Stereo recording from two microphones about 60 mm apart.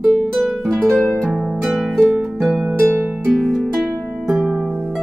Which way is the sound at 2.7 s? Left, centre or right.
Right.